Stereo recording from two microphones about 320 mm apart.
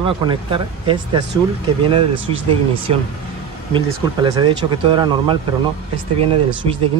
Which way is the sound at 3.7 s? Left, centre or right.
Centre.